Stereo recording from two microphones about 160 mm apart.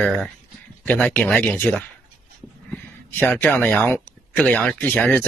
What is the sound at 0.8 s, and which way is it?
Speech, 10° left (ahead or behind).